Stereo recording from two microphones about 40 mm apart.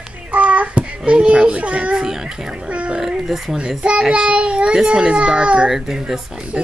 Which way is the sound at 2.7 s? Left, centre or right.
Right.